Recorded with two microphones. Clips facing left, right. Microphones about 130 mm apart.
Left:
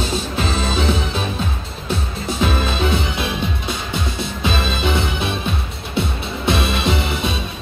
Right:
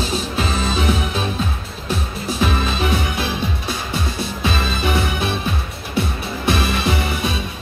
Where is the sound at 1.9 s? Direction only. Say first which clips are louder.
Even; 20° left (ahead or behind).